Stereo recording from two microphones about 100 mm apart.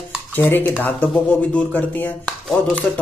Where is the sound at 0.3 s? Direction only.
20° left (ahead or behind).